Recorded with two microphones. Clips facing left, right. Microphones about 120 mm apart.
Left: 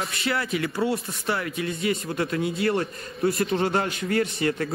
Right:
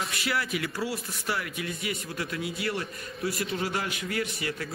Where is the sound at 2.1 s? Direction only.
60° left (ahead or behind).